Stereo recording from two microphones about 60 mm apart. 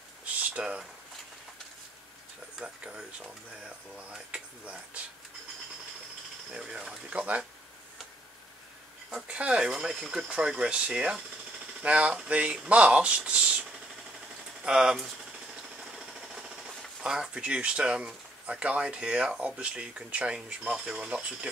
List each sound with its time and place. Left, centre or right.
0.2 s a sound: right
2.6 s speech: centre
6.5 s speech: centre
9.1 s speech: centre
14.6 s a sound: centre
15.8 s jackhammer: centre
17.0 s speech: centre